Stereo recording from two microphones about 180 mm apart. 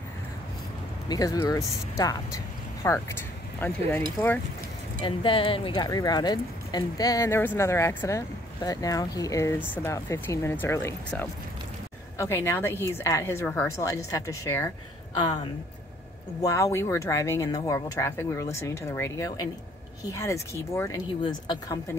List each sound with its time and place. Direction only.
1.0 s speech: 20° left (ahead or behind)
5.0 s speech: 30° left (ahead or behind)
16.3 s speech: 15° left (ahead or behind)